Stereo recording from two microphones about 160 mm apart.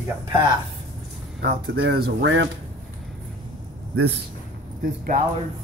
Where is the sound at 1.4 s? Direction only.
90° right.